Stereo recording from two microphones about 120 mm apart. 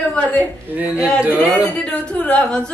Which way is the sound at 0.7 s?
10° right (ahead or behind).